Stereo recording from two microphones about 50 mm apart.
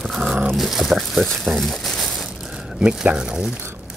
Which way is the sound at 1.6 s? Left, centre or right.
Centre.